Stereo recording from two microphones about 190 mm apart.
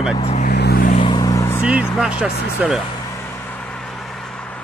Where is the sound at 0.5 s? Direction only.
60° left (ahead or behind).